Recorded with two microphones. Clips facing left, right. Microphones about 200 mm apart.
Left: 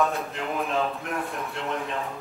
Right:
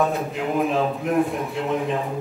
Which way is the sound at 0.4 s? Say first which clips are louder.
Right 6 dB; centre (ahead or behind).